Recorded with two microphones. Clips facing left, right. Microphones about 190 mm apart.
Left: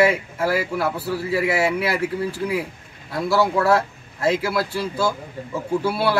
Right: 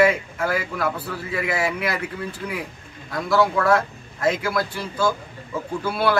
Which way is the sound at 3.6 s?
30° left (ahead or behind).